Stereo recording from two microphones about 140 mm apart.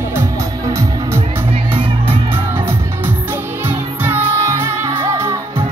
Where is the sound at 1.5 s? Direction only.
45° right (ahead or behind).